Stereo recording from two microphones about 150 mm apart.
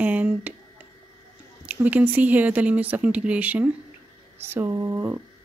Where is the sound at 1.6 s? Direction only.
10° right (ahead or behind).